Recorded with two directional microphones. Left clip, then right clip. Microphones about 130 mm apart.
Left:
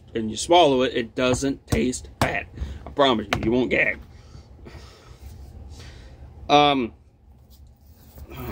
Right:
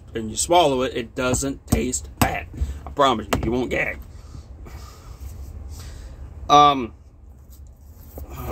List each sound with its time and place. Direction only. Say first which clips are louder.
0.1 s speech: even; 15° left (ahead or behind)
6.4 s speech: right 3 dB; 10° left (ahead or behind)